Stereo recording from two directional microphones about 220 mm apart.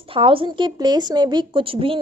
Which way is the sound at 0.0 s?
25° right (ahead or behind).